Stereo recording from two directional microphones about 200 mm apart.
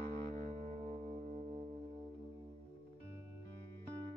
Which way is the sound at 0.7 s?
30° right (ahead or behind).